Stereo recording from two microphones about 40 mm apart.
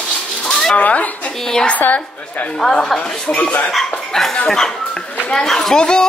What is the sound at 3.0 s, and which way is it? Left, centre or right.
Speech, left.